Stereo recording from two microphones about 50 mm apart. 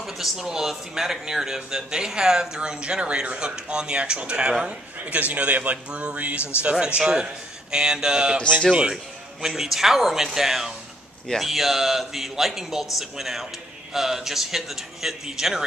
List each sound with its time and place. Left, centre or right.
0.0 s a man's voice: centre